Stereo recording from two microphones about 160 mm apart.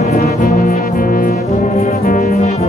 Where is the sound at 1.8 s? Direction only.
55° left (ahead or behind).